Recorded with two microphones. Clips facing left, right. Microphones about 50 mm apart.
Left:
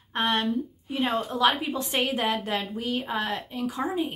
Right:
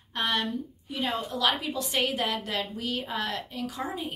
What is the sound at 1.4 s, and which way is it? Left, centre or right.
A woman's voice, left.